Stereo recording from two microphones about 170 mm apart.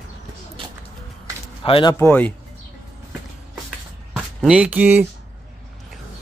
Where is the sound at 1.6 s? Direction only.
30° left (ahead or behind).